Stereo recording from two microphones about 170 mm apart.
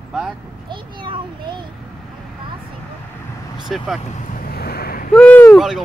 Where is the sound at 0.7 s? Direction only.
30° right (ahead or behind).